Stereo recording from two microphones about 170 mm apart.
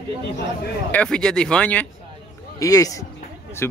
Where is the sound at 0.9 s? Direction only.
5° left (ahead or behind).